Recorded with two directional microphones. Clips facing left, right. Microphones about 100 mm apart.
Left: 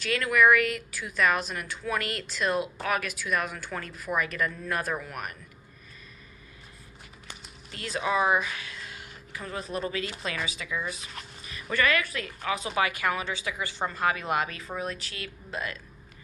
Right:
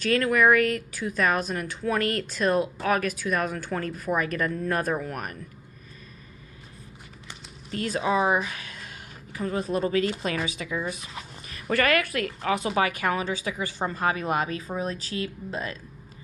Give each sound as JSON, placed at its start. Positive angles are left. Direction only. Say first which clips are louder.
{"t": 0.0, "sound": "a woman's voice", "louder": "right 2 dB", "side_deg": -40}
{"t": 7.7, "sound": "speech", "louder": "right 6 dB", "side_deg": -45}
{"t": 8.0, "sound": "speech", "louder": "right 1 dB", "side_deg": -30}
{"t": 12.5, "sound": "a woman's voice", "louder": "right 2 dB", "side_deg": -40}